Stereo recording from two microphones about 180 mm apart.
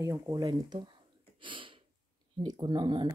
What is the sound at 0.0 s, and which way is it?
Speech, 20° right (ahead or behind).